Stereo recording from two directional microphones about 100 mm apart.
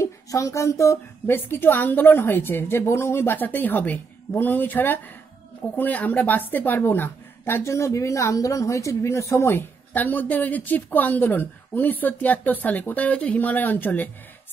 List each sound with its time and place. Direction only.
0.0 s speech: 30° left (ahead or behind)
1.2 s a woman's voice: 20° left (ahead or behind)